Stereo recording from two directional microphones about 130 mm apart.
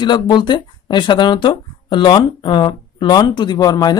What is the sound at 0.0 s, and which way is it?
Speech, 35° left (ahead or behind).